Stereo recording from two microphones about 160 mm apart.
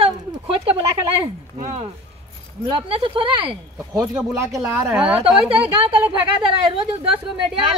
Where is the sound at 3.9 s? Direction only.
15° right (ahead or behind).